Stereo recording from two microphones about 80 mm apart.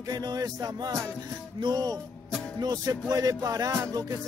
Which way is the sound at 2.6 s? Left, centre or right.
Right.